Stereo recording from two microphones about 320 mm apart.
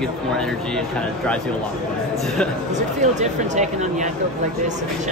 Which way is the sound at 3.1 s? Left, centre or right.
Right.